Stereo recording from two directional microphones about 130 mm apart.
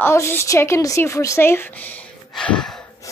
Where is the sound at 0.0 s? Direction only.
20° left (ahead or behind).